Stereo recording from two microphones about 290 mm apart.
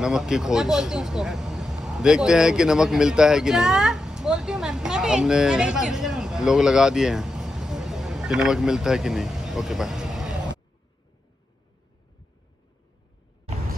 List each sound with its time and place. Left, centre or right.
0.0 s speech: centre